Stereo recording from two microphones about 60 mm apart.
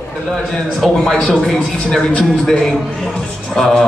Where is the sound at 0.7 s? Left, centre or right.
Centre.